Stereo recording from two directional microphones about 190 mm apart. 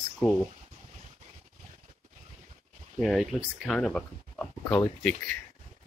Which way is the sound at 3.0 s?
Centre (ahead or behind).